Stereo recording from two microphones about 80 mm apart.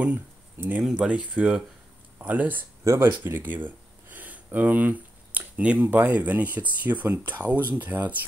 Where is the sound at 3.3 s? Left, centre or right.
Right.